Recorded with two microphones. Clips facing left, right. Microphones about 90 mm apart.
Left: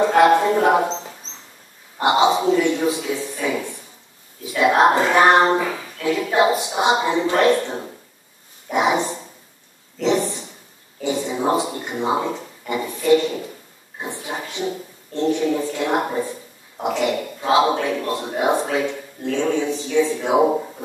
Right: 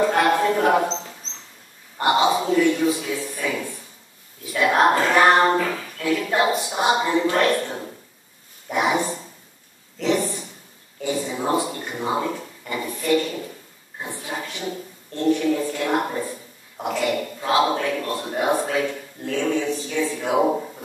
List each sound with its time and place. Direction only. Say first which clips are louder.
0.2 s speech: left 4 dB; 20° left (ahead or behind)
2.0 s a man's voice: left 3 dB; 20° left (ahead or behind)
10.0 s a sound: left 2 dB; 20° left (ahead or behind)
11.1 s a man's voice: left 3 dB; 20° left (ahead or behind)